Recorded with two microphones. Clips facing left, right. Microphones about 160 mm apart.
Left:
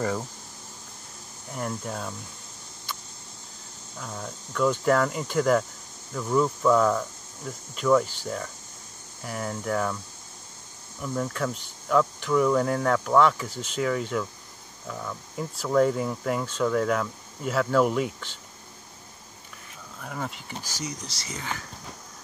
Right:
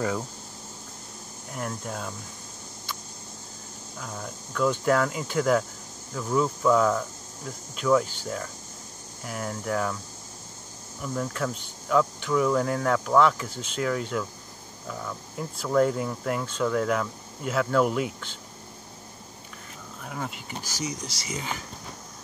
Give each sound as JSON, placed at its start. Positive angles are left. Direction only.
{"t": 1.5, "sound": "speech", "side_deg": 0}
{"t": 4.0, "sound": "speech", "side_deg": 0}
{"t": 11.0, "sound": "speech", "side_deg": 0}
{"t": 20.0, "sound": "speech", "side_deg": -5}
{"t": 20.8, "sound": "speech", "side_deg": -15}